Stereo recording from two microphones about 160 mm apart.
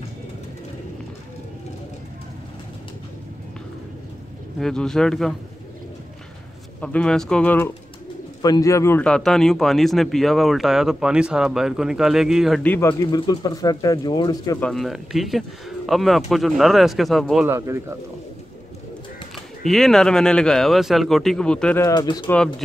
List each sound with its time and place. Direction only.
4.6 s speech: 5° left (ahead or behind)
6.8 s speech: 5° left (ahead or behind)
8.4 s speech: 25° left (ahead or behind); by 12.6 s centre (ahead or behind)
12.6 s speech: 15° left (ahead or behind)
13.1 s speech: 25° left (ahead or behind)
14.6 s speech: centre (ahead or behind)
17.5 s speech: 15° right (ahead or behind)
19.3 s speech: centre (ahead or behind)
21.8 s speech: 25° left (ahead or behind)